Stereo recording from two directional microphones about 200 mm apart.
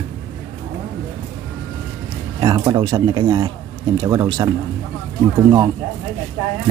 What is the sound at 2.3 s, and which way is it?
A man's voice, 20° right (ahead or behind).